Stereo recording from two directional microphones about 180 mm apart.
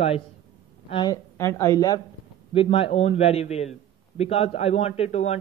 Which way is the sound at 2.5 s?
30° left (ahead or behind).